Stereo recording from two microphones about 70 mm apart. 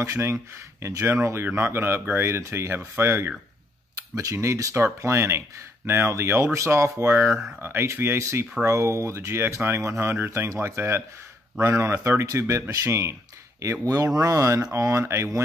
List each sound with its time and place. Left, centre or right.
0.0 s speech: right
4.1 s speech: right